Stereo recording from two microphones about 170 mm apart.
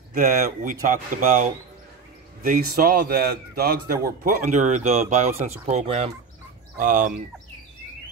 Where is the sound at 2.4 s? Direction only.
60° right (ahead or behind); by 6.1 s 35° right (ahead or behind).